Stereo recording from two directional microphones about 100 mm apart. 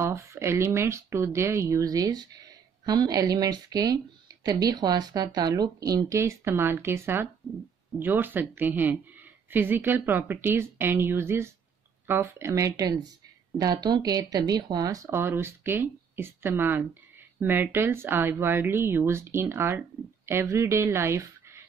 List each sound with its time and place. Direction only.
0.0 s speech: 30° right (ahead or behind)
15.0 s speech: 25° right (ahead or behind)